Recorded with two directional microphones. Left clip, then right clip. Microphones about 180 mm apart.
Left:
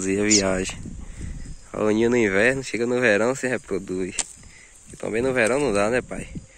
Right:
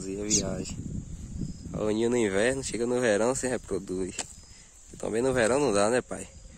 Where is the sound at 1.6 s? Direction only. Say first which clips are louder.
Left 7 dB; centre (ahead or behind).